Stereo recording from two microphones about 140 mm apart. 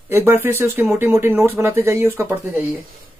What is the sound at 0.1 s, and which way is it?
Speech, 15° right (ahead or behind).